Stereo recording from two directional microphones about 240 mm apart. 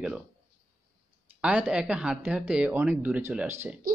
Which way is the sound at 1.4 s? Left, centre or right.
Centre.